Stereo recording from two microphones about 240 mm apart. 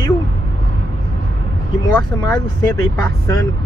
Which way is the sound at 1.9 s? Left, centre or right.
Centre.